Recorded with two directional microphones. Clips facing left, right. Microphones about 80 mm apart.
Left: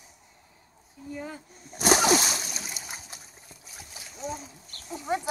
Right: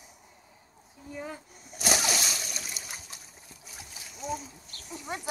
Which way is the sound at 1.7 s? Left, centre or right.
Left.